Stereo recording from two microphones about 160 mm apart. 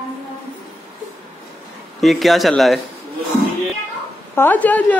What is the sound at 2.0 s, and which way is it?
Speech, centre (ahead or behind).